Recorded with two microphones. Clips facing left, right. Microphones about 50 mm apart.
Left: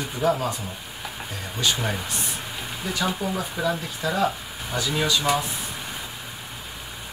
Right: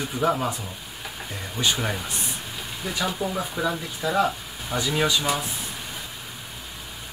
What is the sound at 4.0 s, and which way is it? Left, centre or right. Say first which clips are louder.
Speech: right 4 dB; centre.